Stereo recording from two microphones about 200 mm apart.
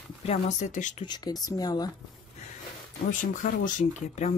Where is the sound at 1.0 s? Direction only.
20° left (ahead or behind).